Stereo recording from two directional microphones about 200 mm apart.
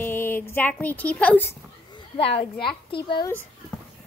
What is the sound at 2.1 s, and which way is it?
A woman's voice, 30° left (ahead or behind).